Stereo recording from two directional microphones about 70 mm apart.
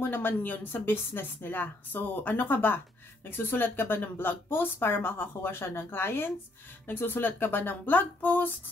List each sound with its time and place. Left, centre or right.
0.0 s a woman's voice: left